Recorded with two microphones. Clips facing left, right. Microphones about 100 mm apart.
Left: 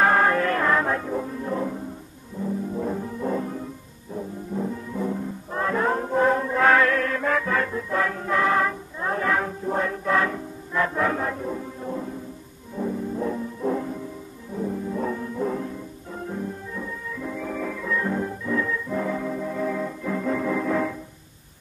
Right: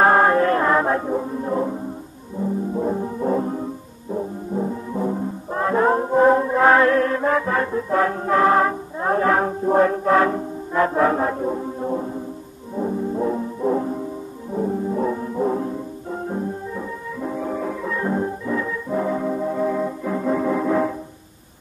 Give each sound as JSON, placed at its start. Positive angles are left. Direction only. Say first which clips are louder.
{"t": 0.0, "sound": "music", "louder": "right 5 dB", "side_deg": -30}